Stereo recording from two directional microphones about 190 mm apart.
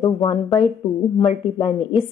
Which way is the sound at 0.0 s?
25° left (ahead or behind).